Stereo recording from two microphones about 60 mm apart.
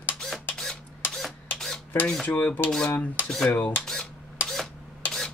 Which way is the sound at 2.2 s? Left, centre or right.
Left.